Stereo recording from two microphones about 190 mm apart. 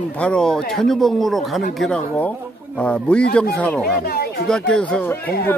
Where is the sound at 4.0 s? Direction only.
55° left (ahead or behind).